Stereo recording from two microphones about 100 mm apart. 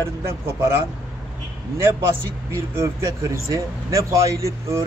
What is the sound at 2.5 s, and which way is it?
Speech, 25° right (ahead or behind).